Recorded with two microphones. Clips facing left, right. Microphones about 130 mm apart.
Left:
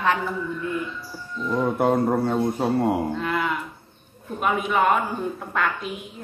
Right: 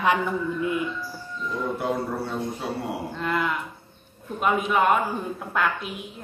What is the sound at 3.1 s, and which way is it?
A woman's voice, centre (ahead or behind).